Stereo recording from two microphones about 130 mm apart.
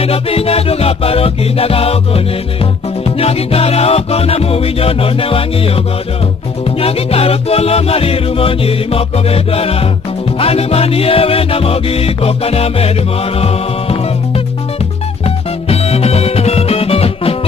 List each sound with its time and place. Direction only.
0.0 s music: 50° left (ahead or behind)
6.8 s music: 50° left (ahead or behind)
15.2 s music: 50° left (ahead or behind)